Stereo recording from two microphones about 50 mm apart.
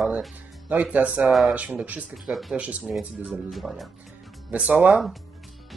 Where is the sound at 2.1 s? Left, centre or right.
Centre.